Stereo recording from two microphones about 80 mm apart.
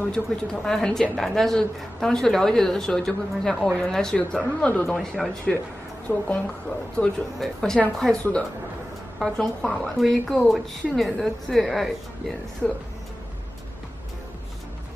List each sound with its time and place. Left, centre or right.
0.0 s speech: centre
6.0 s speech: centre
7.3 s speech: centre